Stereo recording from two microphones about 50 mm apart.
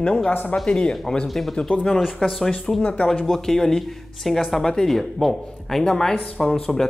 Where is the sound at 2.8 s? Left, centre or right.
Left.